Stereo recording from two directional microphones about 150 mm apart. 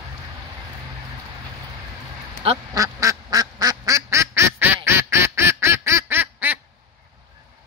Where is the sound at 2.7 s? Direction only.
20° right (ahead or behind).